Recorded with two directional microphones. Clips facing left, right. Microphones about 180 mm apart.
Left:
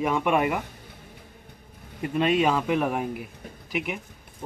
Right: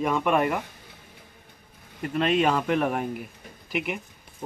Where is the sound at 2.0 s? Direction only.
10° left (ahead or behind).